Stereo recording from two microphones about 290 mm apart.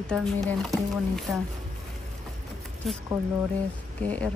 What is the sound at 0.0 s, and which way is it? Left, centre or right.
Speech, centre.